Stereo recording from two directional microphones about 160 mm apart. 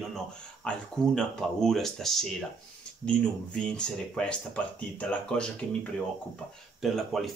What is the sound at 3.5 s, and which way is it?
Speech, 5° left (ahead or behind).